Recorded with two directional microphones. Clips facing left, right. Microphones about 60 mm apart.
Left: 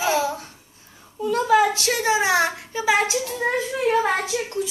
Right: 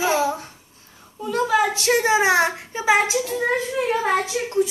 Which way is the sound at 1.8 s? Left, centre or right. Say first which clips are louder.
Right 3 dB; right.